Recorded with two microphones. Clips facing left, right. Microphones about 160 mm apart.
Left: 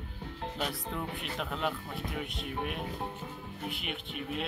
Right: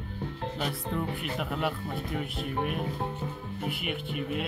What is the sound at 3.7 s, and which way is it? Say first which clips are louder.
Speech: right 6 dB; 5° right (ahead or behind).